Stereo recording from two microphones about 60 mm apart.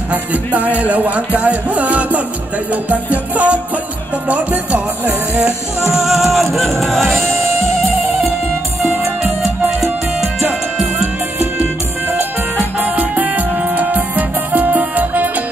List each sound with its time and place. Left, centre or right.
0.1 s music: right
5.9 s music: centre
8.9 s music: right
11.0 s music: right
11.6 s music: right